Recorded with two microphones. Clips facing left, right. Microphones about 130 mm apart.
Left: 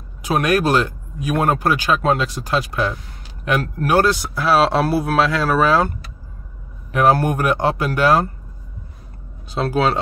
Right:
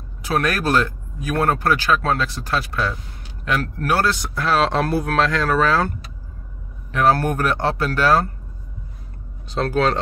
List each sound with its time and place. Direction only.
0.2 s speech: 15° left (ahead or behind)
9.5 s speech: 10° left (ahead or behind)